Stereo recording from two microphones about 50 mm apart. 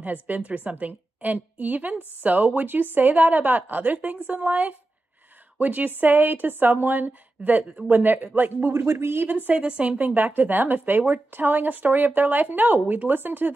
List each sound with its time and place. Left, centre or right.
0.0 s a woman's voice: right
2.0 s a woman's voice: left
2.2 s a woman's voice: right
8.0 s a woman's voice: right
8.7 s speech: right
9.5 s a woman's voice: right